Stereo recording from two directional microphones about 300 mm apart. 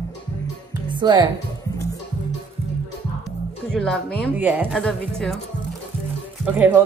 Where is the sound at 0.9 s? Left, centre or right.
Centre.